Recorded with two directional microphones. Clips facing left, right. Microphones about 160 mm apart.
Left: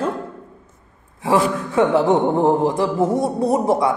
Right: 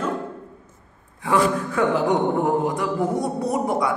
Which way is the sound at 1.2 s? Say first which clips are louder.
Left 2 dB; 25° left (ahead or behind).